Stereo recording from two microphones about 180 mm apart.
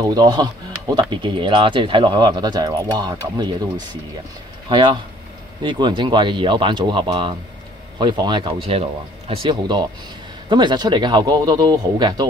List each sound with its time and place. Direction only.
0.0 s speech: 20° right (ahead or behind)
4.6 s speech: 25° right (ahead or behind)